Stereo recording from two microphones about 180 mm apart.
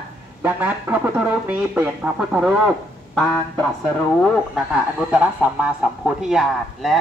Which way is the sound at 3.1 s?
5° left (ahead or behind).